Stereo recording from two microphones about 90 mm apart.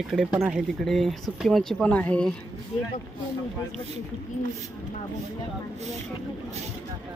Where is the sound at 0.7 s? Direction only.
5° left (ahead or behind).